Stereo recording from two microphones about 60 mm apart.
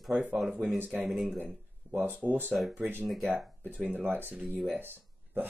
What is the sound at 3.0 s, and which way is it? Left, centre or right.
Speech, centre.